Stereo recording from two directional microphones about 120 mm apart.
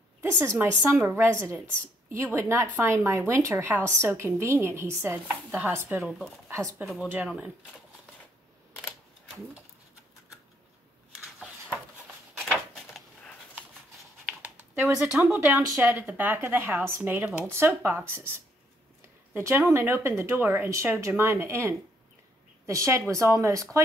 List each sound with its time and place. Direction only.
0.4 s a woman's voice: 20° right (ahead or behind)
6.0 s speech: centre (ahead or behind)
6.5 s a woman's voice: 25° right (ahead or behind)
7.2 s a woman's voice: 10° right (ahead or behind)
12.4 s a sound: 5° left (ahead or behind)
14.2 s a sound: 15° right (ahead or behind)
15.0 s speech: 5° right (ahead or behind)
15.3 s a woman's voice: 15° right (ahead or behind)